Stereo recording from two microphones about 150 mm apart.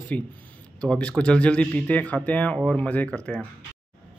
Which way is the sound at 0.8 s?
5° left (ahead or behind).